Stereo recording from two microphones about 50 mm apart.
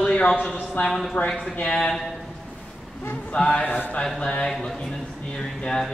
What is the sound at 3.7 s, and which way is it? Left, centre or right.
Speech, left.